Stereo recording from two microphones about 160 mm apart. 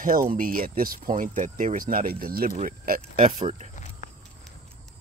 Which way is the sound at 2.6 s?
55° right (ahead or behind).